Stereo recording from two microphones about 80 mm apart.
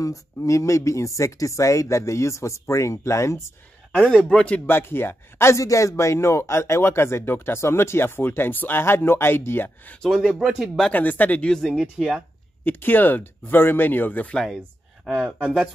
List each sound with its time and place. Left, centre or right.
0.0 s speech: left
3.9 s a man's voice: centre
4.6 s speech: left
10.2 s speech: centre
10.9 s speech: left
11.5 s speech: centre
12.6 s speech: left
15.0 s speech: centre